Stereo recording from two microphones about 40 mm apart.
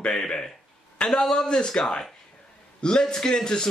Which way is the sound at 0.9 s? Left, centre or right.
Centre.